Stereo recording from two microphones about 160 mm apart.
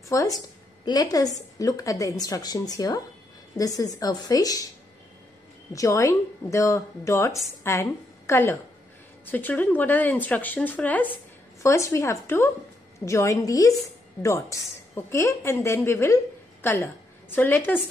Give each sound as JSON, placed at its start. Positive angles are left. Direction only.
{"t": 0.1, "sound": "speech", "side_deg": 20}
{"t": 5.7, "sound": "speech", "side_deg": 20}